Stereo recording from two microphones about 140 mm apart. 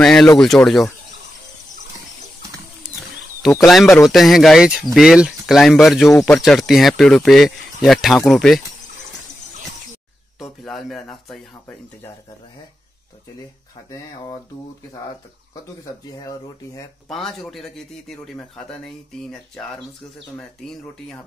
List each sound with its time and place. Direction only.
0.0 s speech: 5° left (ahead or behind)
3.4 s speech: centre (ahead or behind)
6.0 s speech: 20° left (ahead or behind)
6.3 s speech: 5° left (ahead or behind)
10.4 s speech: centre (ahead or behind)
13.8 s speech: 25° left (ahead or behind)
16.1 s speech: 30° left (ahead or behind)
17.1 s speech: 5° left (ahead or behind)
20.3 s speech: 5° left (ahead or behind)